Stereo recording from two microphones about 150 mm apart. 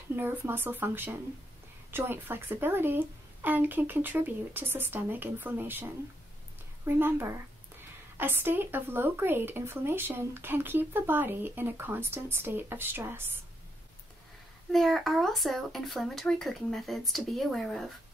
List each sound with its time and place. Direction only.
0.1 s speech: 15° right (ahead or behind)
14.7 s a child's voice: centre (ahead or behind)